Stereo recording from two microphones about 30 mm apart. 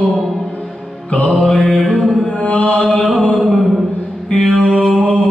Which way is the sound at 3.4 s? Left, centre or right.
Centre.